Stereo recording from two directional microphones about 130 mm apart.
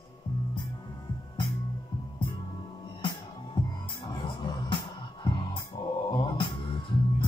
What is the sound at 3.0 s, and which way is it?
Music, 40° left (ahead or behind).